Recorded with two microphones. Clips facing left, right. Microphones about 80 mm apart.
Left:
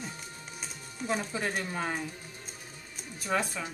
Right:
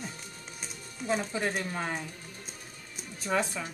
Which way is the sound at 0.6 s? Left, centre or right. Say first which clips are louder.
Left 1 dB; centre.